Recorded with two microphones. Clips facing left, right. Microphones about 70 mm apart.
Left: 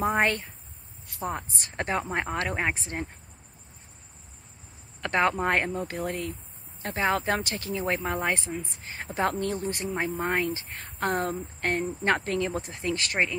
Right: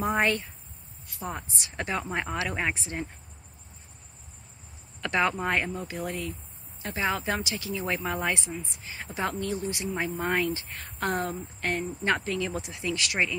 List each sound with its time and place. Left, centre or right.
0.0 s a woman's voice: left
2.0 s speech: left
2.2 s speech: left
5.0 s a woman's voice: left
7.2 s a woman's voice: left
9.8 s a woman's voice: left